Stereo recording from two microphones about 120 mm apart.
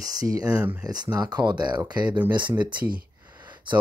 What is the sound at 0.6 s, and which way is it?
Speech, 10° right (ahead or behind).